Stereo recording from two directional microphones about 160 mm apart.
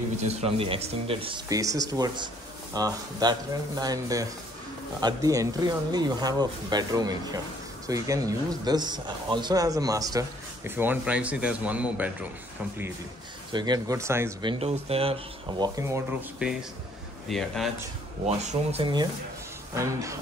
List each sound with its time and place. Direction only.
0.4 s speech: 35° right (ahead or behind)
1.5 s speech: 20° right (ahead or behind)
13.5 s speech: 25° right (ahead or behind)
14.4 s speech: 35° right (ahead or behind)
15.6 s speech: 20° right (ahead or behind); by 17.6 s centre (ahead or behind)
18.2 s speech: 45° right (ahead or behind)
19.7 s speech: 20° right (ahead or behind)